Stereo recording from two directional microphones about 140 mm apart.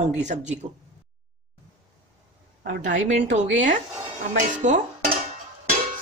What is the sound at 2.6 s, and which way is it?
A woman's voice, 65° right (ahead or behind).